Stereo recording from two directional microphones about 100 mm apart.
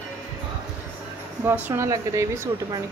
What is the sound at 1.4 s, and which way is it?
Speech, 20° right (ahead or behind).